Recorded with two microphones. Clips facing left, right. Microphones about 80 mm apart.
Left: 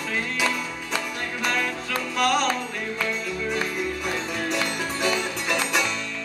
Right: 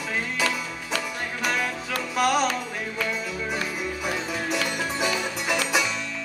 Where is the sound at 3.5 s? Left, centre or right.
Centre.